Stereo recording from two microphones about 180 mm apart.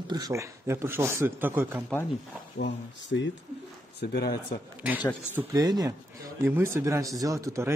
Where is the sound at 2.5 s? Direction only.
75° left (ahead or behind).